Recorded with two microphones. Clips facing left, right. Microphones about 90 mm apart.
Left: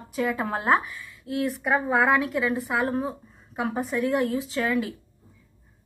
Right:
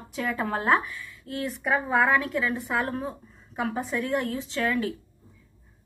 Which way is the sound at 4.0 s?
5° left (ahead or behind).